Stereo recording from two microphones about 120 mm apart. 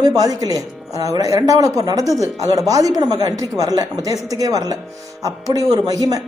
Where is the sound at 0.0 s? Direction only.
30° right (ahead or behind).